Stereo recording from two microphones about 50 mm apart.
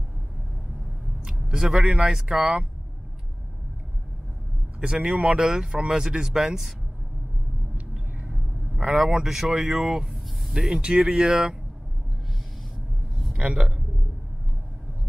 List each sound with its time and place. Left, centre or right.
1.2 s a sound: centre
2.0 s a man's voice: centre
4.7 s a man's voice: right
5.5 s speech: centre
7.7 s a sound: right
8.8 s speech: centre
10.8 s speech: centre
13.2 s a sound: centre
13.6 s a man's voice: centre